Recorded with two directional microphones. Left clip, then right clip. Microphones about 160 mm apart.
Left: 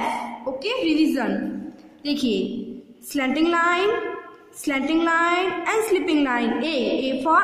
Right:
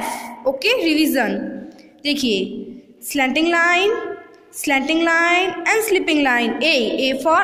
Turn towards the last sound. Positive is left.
turn(degrees=-20)  # may be behind; listen again after turning